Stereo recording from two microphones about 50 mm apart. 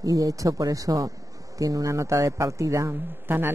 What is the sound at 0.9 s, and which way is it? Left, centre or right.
Speech, right.